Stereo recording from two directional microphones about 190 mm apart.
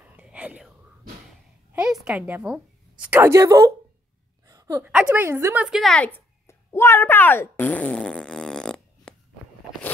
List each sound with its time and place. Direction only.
0.1 s whispering: 5° right (ahead or behind)
1.7 s a woman's voice: 5° right (ahead or behind)
4.5 s a sound: 15° right (ahead or behind); by 9.1 s 5° left (ahead or behind)